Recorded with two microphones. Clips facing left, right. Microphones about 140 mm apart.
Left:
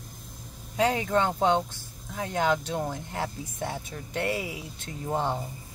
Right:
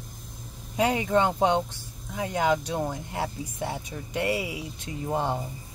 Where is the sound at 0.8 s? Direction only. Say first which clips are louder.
Right 1 dB; 15° right (ahead or behind).